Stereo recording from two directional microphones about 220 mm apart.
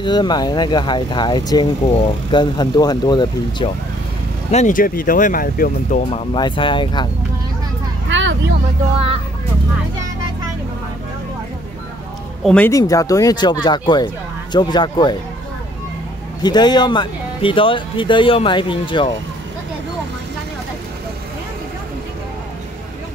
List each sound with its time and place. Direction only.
0.0 s speech: 20° left (ahead or behind)
4.5 s speech: 35° left (ahead or behind)
6.0 s speech: 25° left (ahead or behind)
8.1 s vehicle: 55° right (ahead or behind)
12.4 s speech: 10° left (ahead or behind)
16.4 s speech: 20° left (ahead or behind)